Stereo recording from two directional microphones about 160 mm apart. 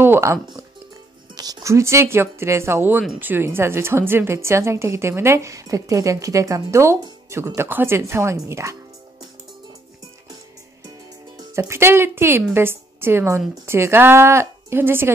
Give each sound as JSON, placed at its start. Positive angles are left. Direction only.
{"t": 0.0, "sound": "a sound", "side_deg": -15}
{"t": 1.3, "sound": "speech", "side_deg": -25}
{"t": 11.3, "sound": "a woman's voice", "side_deg": -20}